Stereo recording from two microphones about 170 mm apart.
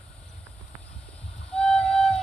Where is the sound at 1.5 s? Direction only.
5° left (ahead or behind).